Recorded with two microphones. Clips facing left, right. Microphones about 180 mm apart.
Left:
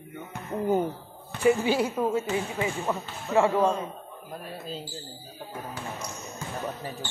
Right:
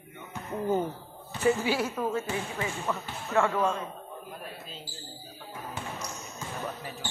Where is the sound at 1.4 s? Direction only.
15° left (ahead or behind).